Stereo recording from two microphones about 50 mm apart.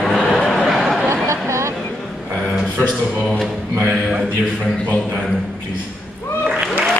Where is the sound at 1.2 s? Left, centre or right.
Right.